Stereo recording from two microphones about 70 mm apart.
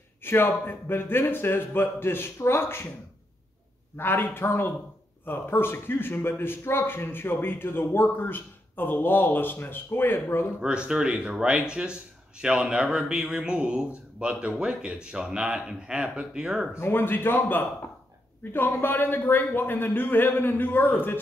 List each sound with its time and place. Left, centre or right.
0.2 s a man's voice: left
3.9 s a man's voice: left
10.6 s a man's voice: centre
16.7 s a man's voice: left